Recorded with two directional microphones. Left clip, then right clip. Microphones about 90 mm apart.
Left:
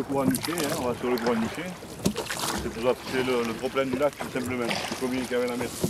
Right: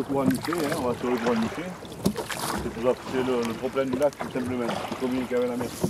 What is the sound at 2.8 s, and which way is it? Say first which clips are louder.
Speech: right 1 dB; 30° left (ahead or behind).